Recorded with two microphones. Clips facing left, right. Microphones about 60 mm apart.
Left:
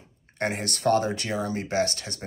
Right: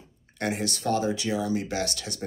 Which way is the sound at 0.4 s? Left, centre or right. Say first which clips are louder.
Left 1 dB; left.